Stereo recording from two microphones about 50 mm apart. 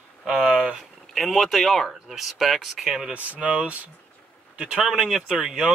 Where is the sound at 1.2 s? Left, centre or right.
Centre.